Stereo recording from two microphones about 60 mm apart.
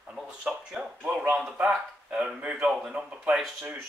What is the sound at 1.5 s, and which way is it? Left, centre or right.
Speech, centre.